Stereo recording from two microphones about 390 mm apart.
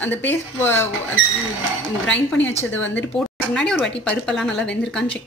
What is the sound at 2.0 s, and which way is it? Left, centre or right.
Speech, left.